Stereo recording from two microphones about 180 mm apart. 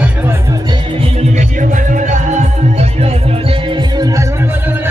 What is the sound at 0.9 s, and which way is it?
Music, 40° right (ahead or behind).